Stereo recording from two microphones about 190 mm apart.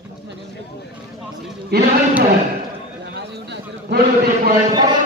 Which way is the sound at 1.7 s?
55° right (ahead or behind).